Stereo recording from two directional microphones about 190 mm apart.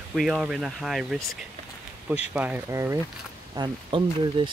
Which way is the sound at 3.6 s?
25° right (ahead or behind).